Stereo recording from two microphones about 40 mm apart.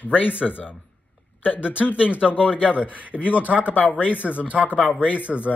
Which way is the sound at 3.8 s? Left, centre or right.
Left.